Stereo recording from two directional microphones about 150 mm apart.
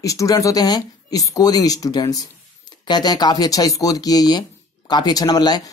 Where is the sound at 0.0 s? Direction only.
20° left (ahead or behind).